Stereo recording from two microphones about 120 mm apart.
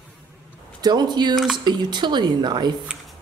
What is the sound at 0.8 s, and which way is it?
Speech, 35° right (ahead or behind).